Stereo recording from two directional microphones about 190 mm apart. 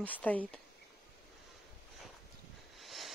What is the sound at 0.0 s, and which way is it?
Speech, 10° left (ahead or behind).